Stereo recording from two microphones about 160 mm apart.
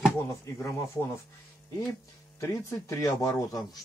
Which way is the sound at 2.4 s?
20° left (ahead or behind).